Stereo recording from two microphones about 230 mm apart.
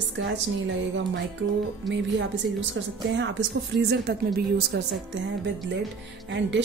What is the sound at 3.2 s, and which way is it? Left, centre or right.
Speech, right.